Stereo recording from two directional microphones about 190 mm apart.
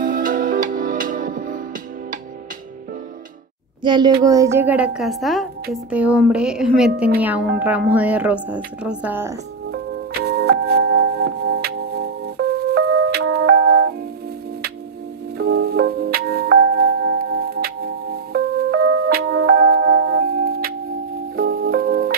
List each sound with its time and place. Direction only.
0.0 s music: 45° right (ahead or behind)
3.8 s a child's voice: 25° right (ahead or behind)
10.2 s music: 55° right (ahead or behind)
15.3 s music: 55° right (ahead or behind)